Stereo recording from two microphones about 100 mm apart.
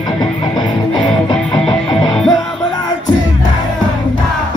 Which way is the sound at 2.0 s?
5° left (ahead or behind).